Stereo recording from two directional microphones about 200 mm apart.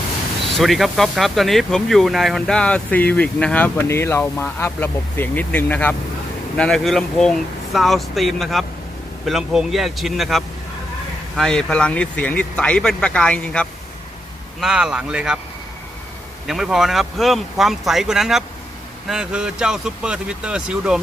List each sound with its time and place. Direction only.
0.6 s speech: centre (ahead or behind)
16.4 s speech: centre (ahead or behind)